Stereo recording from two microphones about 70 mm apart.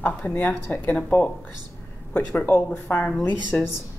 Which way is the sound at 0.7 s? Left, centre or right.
Left.